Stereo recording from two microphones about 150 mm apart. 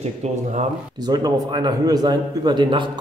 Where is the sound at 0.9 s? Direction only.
25° right (ahead or behind).